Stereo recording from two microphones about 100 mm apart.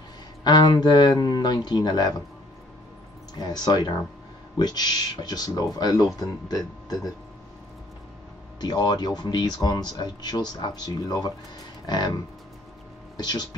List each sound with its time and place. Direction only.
0.4 s speech: 45° left (ahead or behind)
3.3 s speech: 45° left (ahead or behind)
8.5 s speech: 45° left (ahead or behind)
13.2 s speech: 45° left (ahead or behind)